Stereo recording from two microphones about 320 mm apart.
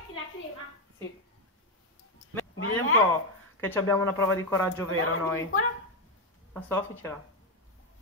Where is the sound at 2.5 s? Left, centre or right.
Left.